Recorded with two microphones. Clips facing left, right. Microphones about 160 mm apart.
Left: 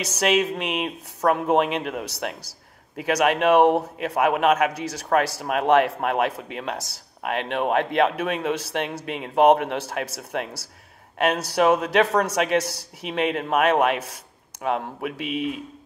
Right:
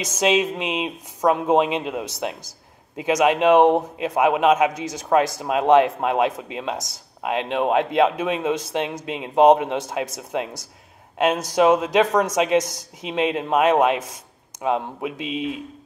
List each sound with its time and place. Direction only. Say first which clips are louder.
0.0 s a man's voice: right 2 dB; 20° right (ahead or behind)